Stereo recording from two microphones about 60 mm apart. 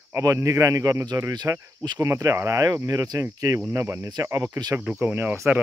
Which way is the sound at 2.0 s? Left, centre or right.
Right.